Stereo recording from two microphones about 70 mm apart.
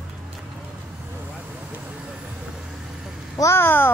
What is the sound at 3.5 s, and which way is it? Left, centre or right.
Speech, left.